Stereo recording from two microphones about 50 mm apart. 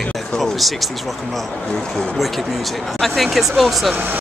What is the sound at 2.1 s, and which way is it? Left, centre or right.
Speech, centre.